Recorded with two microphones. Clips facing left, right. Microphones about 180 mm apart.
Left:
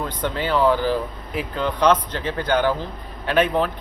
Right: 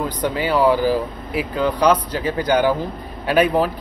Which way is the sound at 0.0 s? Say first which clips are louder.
Right 3 dB; 10° right (ahead or behind).